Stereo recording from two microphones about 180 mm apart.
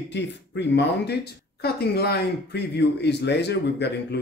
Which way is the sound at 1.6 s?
60° left (ahead or behind).